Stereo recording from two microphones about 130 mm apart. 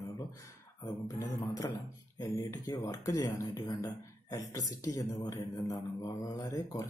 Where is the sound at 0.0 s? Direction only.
25° left (ahead or behind).